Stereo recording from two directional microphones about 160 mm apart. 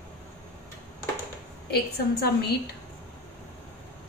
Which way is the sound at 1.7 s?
85° left.